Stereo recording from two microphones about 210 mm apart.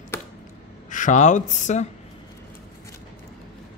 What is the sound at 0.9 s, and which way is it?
Speech, 35° left (ahead or behind).